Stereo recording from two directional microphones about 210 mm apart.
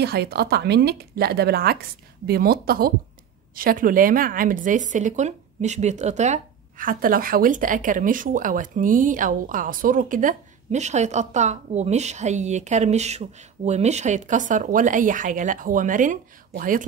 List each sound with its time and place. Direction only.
0.0 s a woman's voice: 50° right (ahead or behind)